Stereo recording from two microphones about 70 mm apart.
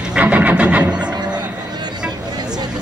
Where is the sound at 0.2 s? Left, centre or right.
Right.